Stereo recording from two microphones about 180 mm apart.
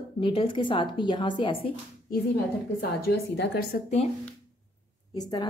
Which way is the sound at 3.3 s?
60° left (ahead or behind).